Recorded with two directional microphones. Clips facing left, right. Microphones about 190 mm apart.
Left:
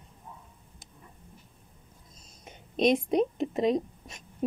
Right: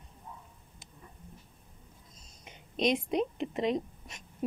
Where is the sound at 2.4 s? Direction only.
50° left (ahead or behind).